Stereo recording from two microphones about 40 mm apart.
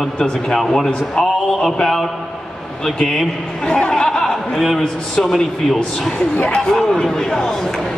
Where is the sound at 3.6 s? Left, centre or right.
Left.